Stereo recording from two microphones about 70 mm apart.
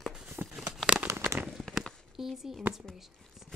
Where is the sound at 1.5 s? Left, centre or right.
Centre.